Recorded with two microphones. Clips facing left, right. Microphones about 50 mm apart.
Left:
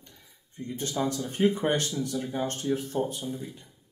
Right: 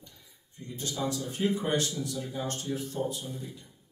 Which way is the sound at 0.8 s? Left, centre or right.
Left.